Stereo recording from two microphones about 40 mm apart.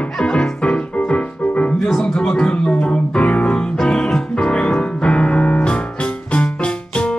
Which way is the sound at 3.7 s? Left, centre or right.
Centre.